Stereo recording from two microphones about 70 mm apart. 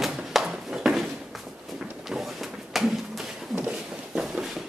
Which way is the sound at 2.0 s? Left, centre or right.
Centre.